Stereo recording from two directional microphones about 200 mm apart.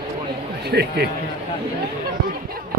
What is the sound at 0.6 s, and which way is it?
Speech, 55° right (ahead or behind).